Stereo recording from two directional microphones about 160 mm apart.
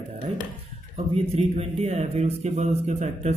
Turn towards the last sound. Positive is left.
turn(degrees=-45)  # may be behind; listen again after turning